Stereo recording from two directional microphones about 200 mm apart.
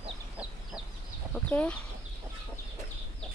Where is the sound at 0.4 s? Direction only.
5° right (ahead or behind).